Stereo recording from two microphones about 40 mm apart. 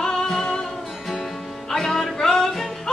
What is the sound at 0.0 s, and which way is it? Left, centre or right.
Music, centre.